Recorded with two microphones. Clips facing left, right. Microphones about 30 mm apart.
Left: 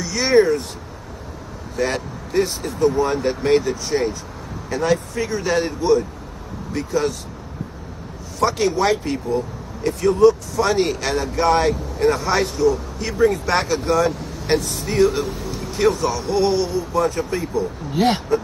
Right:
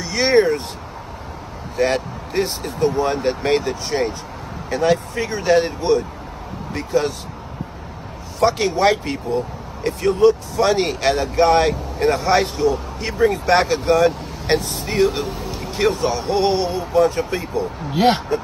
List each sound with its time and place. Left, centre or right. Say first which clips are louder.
0.0 s speech: even; right
2.0 s speech: left 1 dB; right
4.9 s speech: even; right
5.4 s speech: right 6 dB; right
5.8 s speech: left 1 dB; right
8.4 s speech: right 2 dB; right
15.2 s a sound: even; right
15.8 s speech: even; right